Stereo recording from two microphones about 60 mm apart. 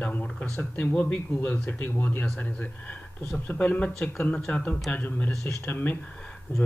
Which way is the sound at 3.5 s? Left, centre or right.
Left.